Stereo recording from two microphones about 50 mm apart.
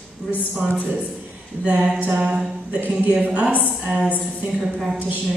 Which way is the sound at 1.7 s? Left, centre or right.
Right.